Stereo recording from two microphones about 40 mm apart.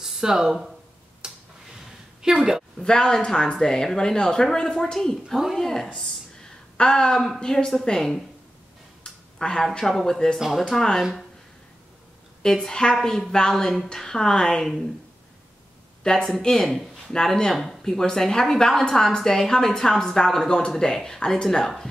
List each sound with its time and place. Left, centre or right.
0.0 s speech: centre
1.2 s a sound: centre
2.2 s a woman's voice: centre
2.8 s speech: centre
9.0 s a sound: centre
9.8 s speech: centre
12.4 s speech: centre
16.0 s a woman's voice: centre